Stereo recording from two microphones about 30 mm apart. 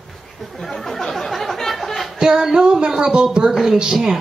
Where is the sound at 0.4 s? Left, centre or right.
Centre.